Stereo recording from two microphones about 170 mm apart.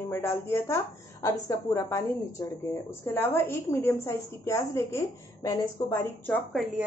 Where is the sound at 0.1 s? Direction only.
15° left (ahead or behind).